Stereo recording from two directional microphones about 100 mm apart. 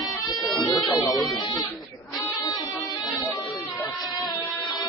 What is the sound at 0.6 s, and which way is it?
Speech, 40° left (ahead or behind).